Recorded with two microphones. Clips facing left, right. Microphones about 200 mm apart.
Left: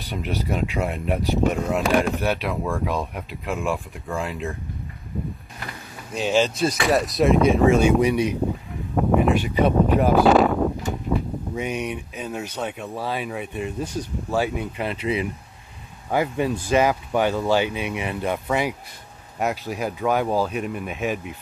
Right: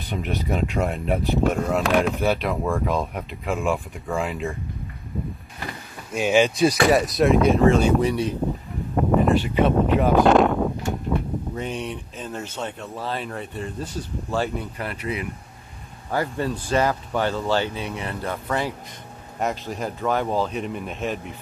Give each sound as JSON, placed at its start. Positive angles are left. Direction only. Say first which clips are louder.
{"t": 0.0, "sound": "speech", "louder": "even", "side_deg": 0}
{"t": 5.1, "sound": "a sound", "louder": "even", "side_deg": 0}
{"t": 6.6, "sound": "speech", "louder": "right 3 dB", "side_deg": 0}
{"t": 14.8, "sound": "speech", "louder": "left 6 dB", "side_deg": 25}